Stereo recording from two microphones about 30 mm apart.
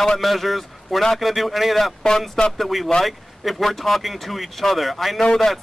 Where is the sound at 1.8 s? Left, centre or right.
Centre.